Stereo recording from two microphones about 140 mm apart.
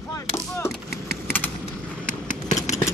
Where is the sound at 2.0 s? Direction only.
60° left (ahead or behind).